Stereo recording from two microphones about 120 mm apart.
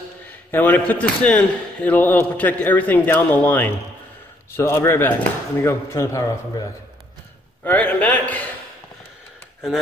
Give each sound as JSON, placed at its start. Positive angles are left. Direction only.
{"t": 0.5, "sound": "a man's voice", "side_deg": 15}
{"t": 7.6, "sound": "a man's voice", "side_deg": 15}